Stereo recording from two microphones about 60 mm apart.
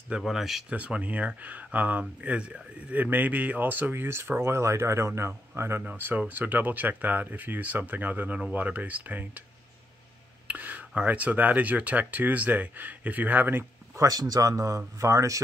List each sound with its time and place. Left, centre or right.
0.3 s speech: centre
0.7 s speech: centre; by 5.3 s right
5.8 s speech: right
10.5 s speech: right
13.9 s speech: right